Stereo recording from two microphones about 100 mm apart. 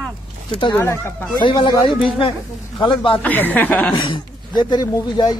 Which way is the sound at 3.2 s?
20° left (ahead or behind).